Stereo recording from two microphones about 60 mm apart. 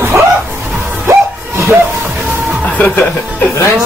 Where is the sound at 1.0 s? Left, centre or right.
Right.